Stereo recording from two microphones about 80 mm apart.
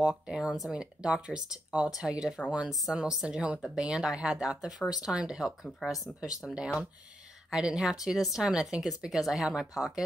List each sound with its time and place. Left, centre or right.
0.3 s a woman's voice: centre